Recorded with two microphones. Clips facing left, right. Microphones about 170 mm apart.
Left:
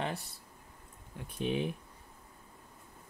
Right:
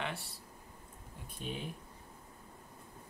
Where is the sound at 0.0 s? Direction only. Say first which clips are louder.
Left 4 dB; 40° left (ahead or behind).